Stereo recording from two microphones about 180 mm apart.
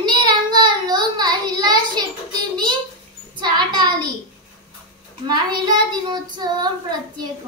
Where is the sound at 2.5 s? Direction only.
25° right (ahead or behind).